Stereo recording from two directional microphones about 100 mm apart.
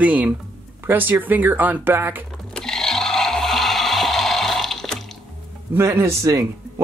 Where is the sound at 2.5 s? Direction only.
5° left (ahead or behind).